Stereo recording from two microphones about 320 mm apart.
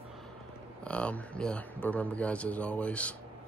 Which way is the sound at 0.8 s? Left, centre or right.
Centre.